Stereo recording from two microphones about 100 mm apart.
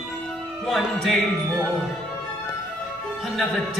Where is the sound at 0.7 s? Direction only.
Centre (ahead or behind).